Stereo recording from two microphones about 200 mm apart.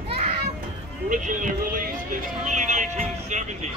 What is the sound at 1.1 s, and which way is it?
Speech, 40° right (ahead or behind).